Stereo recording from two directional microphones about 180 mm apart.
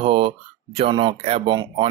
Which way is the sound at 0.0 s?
30° right (ahead or behind).